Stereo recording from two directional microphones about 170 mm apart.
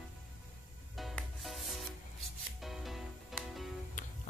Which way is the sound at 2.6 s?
Centre (ahead or behind).